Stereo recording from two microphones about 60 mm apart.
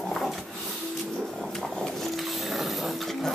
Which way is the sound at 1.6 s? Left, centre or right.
Centre.